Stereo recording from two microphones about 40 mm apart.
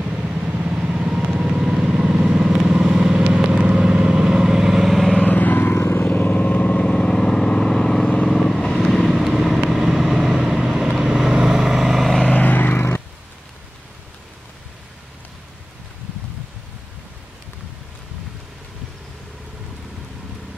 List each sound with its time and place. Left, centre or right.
0.0 s vehicle: right; by 5.1 s centre
5.2 s vehicle: left
5.8 s vehicle: left
6.0 s vehicle: left
6.5 s vehicle: left; by 8.7 s centre
8.7 s vehicle: centre
12.3 s vehicle: left
12.6 s a sound: left